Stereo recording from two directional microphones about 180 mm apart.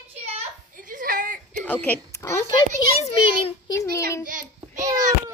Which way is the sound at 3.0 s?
30° left (ahead or behind).